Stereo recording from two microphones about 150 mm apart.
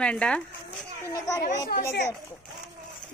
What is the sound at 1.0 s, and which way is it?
Speech, 20° left (ahead or behind).